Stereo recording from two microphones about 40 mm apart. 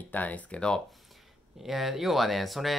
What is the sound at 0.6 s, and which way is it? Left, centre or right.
Speech, centre.